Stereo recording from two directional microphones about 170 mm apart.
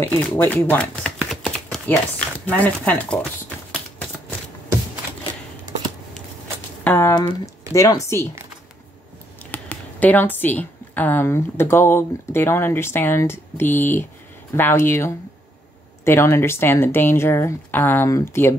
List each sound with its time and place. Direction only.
0.0 s speech: 10° left (ahead or behind)
1.3 s chopping: centre (ahead or behind)
1.9 s speech: 10° left (ahead or behind)
6.8 s typewriter: 10° left (ahead or behind)
7.2 s speech: 20° left (ahead or behind)
9.5 s speech: 10° left (ahead or behind)